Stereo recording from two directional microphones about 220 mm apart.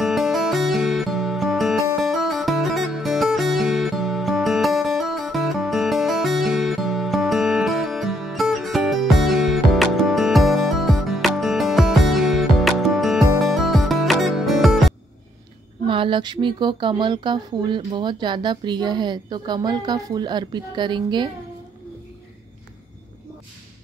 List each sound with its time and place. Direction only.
0.0 s music: centre (ahead or behind)
15.9 s speech: 25° right (ahead or behind)